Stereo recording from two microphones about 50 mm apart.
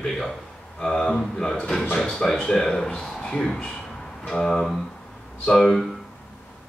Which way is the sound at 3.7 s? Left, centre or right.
Centre.